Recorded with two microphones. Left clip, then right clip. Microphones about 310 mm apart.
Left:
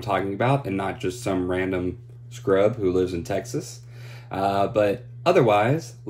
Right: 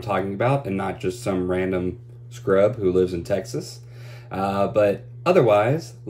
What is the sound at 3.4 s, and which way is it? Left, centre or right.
Speech, left.